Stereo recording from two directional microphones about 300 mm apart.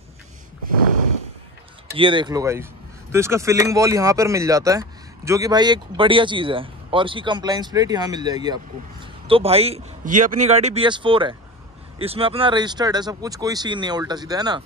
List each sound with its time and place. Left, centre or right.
2.0 s a man's voice: centre